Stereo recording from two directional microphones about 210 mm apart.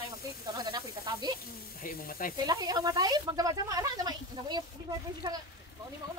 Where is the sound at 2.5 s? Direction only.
20° right (ahead or behind).